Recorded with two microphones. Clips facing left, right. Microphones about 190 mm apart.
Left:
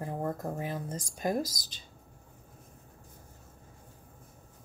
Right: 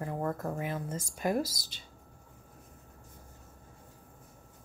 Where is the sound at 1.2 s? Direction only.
40° left (ahead or behind).